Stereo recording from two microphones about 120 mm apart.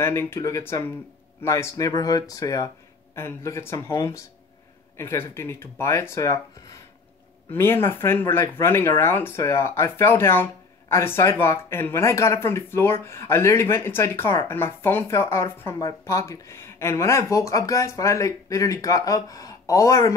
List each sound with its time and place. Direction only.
0.0 s speech: 20° left (ahead or behind)